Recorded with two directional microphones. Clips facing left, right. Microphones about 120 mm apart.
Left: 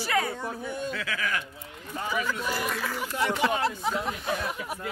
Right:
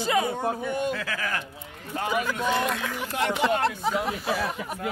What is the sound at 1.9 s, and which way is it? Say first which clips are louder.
Speech: right 4 dB; 70° right (ahead or behind).